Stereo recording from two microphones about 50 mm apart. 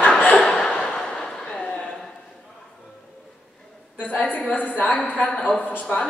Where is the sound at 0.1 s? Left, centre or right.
Left.